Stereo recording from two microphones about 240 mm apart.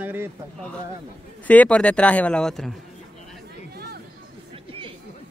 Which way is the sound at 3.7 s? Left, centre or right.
Right.